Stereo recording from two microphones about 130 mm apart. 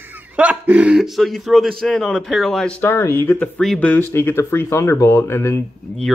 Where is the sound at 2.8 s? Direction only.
20° left (ahead or behind).